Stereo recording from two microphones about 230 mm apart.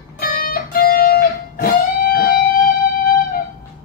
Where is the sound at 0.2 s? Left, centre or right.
Left.